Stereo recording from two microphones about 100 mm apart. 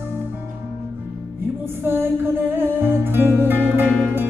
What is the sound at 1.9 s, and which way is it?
Music, 25° right (ahead or behind).